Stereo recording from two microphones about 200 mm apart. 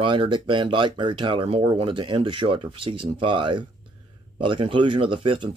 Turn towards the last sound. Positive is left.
turn(degrees=-25)  # may be behind; listen again after turning